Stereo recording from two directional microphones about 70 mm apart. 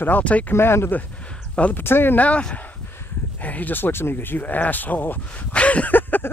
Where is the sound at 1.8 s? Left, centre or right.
Left.